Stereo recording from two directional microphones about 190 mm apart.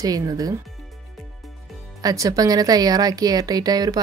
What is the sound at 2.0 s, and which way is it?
Speech, 20° right (ahead or behind).